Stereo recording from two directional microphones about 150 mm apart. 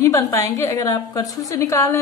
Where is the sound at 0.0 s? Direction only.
20° left (ahead or behind).